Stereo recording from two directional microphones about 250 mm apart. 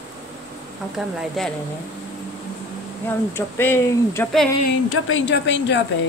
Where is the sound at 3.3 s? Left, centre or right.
Centre.